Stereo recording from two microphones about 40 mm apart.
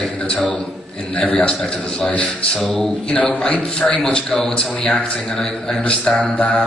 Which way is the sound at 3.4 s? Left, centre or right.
Centre.